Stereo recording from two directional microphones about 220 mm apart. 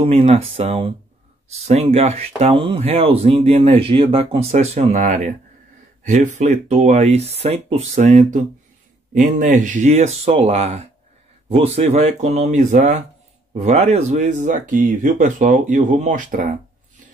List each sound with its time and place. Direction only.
0.0 s speech: 30° right (ahead or behind)